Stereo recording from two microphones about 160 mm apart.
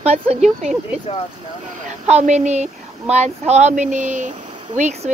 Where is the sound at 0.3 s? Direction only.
45° right (ahead or behind).